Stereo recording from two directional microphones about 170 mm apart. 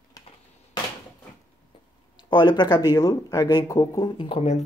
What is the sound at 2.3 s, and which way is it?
Speech, 25° left (ahead or behind).